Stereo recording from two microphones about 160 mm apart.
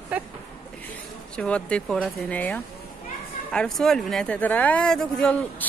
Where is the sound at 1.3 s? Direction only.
5° left (ahead or behind).